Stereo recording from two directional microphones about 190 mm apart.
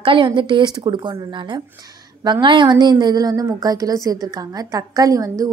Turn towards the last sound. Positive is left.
turn(degrees=-20)  # may be behind; listen again after turning